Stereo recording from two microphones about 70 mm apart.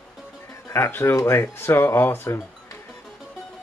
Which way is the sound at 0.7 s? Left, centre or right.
Left.